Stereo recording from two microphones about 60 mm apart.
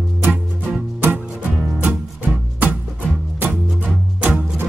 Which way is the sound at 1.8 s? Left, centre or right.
Right.